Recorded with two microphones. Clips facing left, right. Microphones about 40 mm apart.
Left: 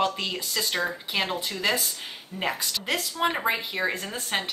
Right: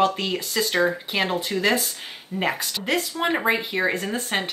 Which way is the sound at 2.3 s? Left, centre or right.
Right.